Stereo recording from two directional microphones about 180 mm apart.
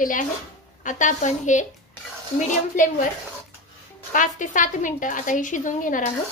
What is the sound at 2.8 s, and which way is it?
Speech, 45° left (ahead or behind).